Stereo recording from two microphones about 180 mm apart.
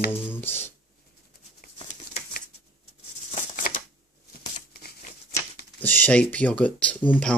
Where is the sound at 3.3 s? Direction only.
50° left (ahead or behind).